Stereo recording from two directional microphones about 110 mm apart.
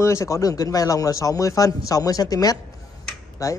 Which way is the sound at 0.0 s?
30° left (ahead or behind).